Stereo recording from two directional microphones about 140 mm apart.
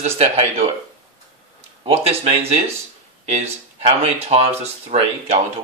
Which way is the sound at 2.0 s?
45° right (ahead or behind).